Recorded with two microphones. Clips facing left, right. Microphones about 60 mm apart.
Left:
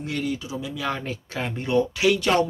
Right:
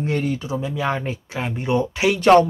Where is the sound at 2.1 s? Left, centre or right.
Right.